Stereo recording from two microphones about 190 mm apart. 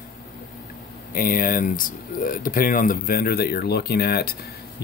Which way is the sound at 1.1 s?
50° left (ahead or behind).